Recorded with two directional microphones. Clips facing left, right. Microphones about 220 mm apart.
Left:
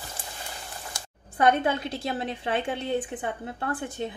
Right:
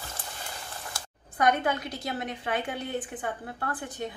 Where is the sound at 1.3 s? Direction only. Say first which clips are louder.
Left 3 dB; 25° left (ahead or behind).